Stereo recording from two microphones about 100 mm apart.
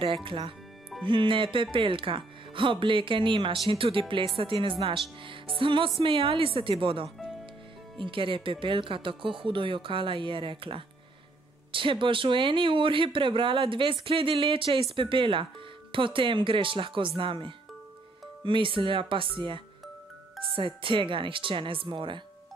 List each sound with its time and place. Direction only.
0.0 s speech: 60° right (ahead or behind)